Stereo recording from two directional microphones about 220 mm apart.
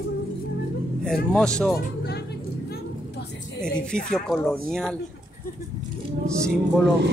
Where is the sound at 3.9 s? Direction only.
5° left (ahead or behind).